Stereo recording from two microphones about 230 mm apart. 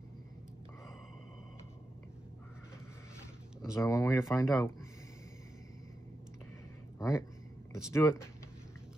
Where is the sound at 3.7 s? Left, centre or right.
Centre.